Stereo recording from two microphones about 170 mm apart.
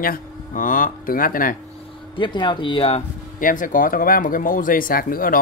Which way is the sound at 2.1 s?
30° left (ahead or behind).